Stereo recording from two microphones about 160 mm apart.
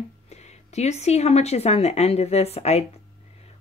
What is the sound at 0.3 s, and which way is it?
A woman's voice, 45° left (ahead or behind).